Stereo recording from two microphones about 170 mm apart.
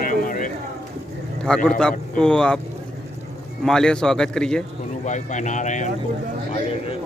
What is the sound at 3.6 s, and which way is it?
A man's voice, 5° left (ahead or behind).